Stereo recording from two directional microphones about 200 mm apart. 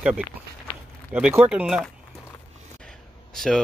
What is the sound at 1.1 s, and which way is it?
Speech, 10° right (ahead or behind).